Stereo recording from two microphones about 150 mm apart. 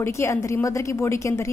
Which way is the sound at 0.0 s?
20° left (ahead or behind).